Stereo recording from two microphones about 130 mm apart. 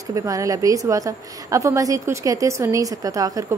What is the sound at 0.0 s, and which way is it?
A woman's voice, 25° right (ahead or behind).